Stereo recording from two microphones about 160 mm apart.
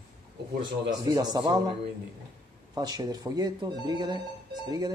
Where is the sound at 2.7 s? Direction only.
25° right (ahead or behind).